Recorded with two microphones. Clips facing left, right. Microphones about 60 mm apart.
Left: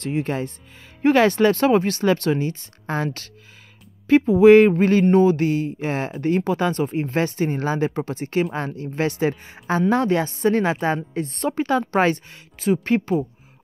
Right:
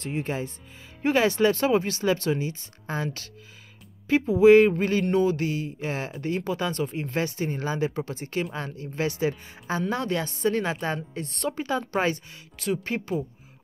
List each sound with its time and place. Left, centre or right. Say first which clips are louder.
0.0 s speech: left 5 dB; left
1.0 s speech: left 5 dB; left
5.1 s speech: left 7 dB; left
11.5 s speech: left 8 dB; left
12.7 s speech: left 11 dB; left